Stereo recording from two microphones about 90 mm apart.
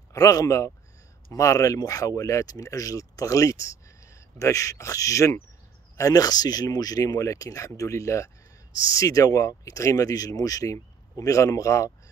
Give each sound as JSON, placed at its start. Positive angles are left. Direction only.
{"t": 0.1, "sound": "speech", "side_deg": 40}